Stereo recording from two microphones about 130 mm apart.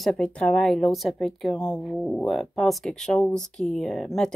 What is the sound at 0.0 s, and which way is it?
A woman's voice, 5° left (ahead or behind).